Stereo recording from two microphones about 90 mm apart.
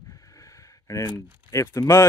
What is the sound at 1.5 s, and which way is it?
Speech, 35° left (ahead or behind).